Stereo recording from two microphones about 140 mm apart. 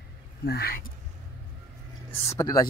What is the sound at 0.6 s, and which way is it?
Speech, 90° left.